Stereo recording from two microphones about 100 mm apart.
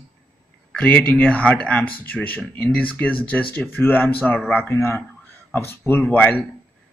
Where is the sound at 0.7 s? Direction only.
15° left (ahead or behind).